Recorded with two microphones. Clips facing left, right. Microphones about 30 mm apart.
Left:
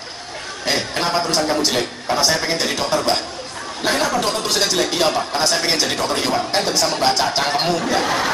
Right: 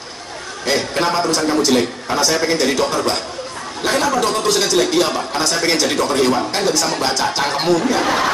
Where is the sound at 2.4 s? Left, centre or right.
Centre.